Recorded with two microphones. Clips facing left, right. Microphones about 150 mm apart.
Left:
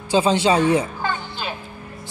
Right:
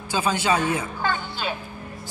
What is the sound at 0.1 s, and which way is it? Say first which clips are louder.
Speech: left 6 dB; 30° left (ahead or behind).